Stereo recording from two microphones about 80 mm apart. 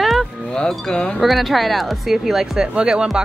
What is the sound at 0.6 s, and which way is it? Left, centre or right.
Speech, centre.